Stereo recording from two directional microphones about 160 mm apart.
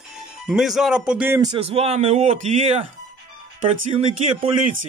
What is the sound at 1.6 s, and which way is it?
Speech, 40° right (ahead or behind).